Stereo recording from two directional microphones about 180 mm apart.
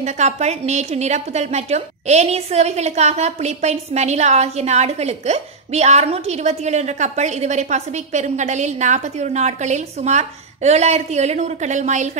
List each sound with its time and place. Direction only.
0.0 s a woman's voice: 40° right (ahead or behind)